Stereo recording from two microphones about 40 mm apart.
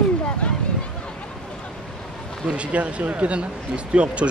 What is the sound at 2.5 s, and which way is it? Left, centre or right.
Speech, right.